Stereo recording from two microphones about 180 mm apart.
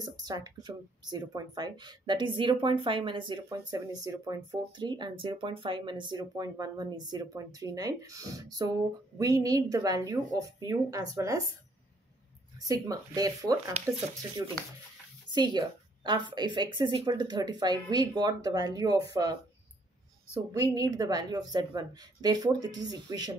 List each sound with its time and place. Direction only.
0.0 s speech: 20° right (ahead or behind)
12.5 s speech: 20° right (ahead or behind)
15.3 s speech: 25° right (ahead or behind)
20.5 s speech: 20° right (ahead or behind)